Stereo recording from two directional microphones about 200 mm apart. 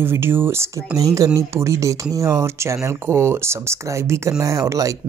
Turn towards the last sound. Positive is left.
turn(degrees=-15)  # may be behind; listen again after turning